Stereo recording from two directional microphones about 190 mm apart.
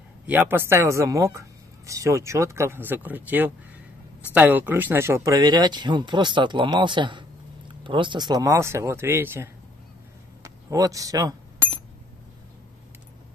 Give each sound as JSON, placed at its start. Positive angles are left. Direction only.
{"t": 0.3, "sound": "speech", "side_deg": -10}
{"t": 10.4, "sound": "chink", "side_deg": -15}